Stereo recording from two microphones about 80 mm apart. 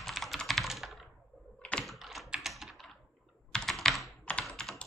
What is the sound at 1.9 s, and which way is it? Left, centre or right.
Computer keyboard, centre.